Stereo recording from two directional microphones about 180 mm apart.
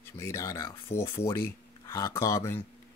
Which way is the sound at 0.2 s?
15° left (ahead or behind).